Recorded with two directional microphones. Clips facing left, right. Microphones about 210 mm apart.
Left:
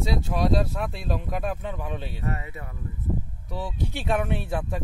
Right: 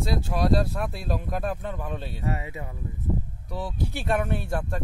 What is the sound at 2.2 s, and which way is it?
Speech, 15° right (ahead or behind).